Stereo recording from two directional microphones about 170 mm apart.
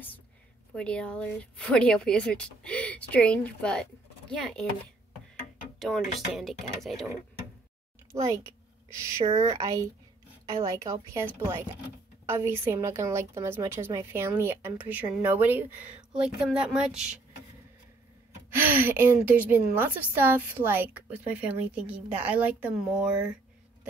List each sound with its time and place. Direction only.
0.7 s a woman's voice: 5° left (ahead or behind)
5.8 s a woman's voice: centre (ahead or behind)
8.1 s speech: 20° right (ahead or behind)
9.6 s a woman's voice: 20° right (ahead or behind)
12.3 s a woman's voice: 15° right (ahead or behind)
18.5 s a woman's voice: 10° right (ahead or behind)